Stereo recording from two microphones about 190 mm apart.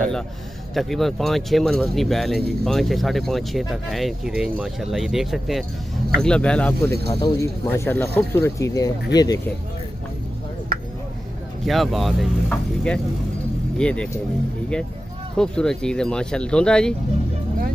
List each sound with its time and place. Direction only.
0.7 s speech: centre (ahead or behind)
7.1 s speech: 25° left (ahead or behind)
7.3 s speech: 15° left (ahead or behind)
10.7 s a sound: 50° right (ahead or behind)
11.6 s speech: centre (ahead or behind)
15.3 s speech: 5° left (ahead or behind)